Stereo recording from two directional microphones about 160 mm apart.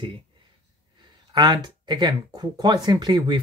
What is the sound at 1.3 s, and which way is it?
Speech, 25° right (ahead or behind).